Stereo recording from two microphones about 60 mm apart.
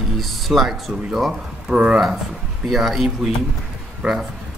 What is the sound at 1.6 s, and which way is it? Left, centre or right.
Speech, centre.